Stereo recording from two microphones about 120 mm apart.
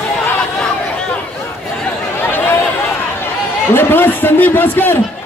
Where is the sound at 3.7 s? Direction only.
15° left (ahead or behind).